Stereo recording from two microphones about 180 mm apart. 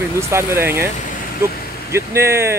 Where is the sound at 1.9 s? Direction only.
15° right (ahead or behind).